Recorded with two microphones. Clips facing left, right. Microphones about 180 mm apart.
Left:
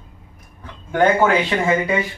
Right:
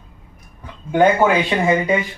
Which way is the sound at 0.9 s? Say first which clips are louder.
Right 1 dB; 15° right (ahead or behind).